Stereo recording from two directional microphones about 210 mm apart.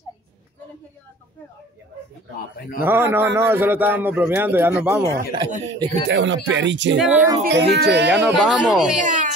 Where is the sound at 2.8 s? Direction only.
10° right (ahead or behind).